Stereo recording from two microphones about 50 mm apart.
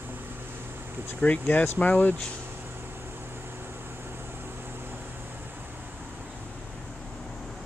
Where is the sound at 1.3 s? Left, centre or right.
Left.